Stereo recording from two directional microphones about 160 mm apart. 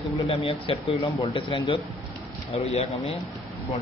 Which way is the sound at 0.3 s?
35° left (ahead or behind).